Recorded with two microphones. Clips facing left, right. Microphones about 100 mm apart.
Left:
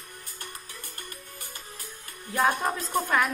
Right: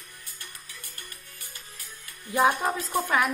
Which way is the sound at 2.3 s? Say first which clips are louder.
Right 2 dB; 15° right (ahead or behind).